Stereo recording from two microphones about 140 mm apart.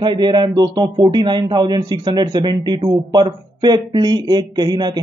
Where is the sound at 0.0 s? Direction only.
30° right (ahead or behind).